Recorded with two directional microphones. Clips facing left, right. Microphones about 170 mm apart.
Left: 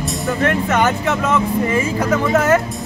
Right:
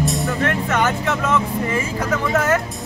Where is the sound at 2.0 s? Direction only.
20° left (ahead or behind).